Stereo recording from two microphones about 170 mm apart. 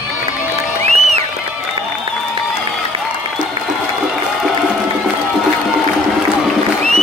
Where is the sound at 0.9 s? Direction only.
40° right (ahead or behind).